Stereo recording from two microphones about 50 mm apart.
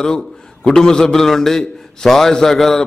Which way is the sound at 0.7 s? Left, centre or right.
Centre.